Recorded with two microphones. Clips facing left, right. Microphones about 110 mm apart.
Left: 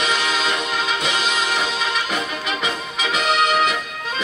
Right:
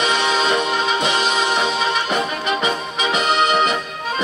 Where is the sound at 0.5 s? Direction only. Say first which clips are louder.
Right 4 dB; 45° right (ahead or behind).